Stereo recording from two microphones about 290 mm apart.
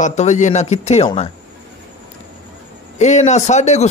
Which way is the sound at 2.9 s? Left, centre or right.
Left.